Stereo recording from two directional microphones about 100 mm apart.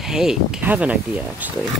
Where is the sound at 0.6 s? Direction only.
15° right (ahead or behind).